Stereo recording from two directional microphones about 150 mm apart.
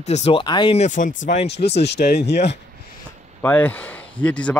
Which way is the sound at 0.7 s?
55° left (ahead or behind).